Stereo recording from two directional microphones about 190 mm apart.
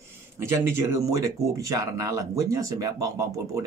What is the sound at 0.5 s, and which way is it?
Speech, 15° right (ahead or behind).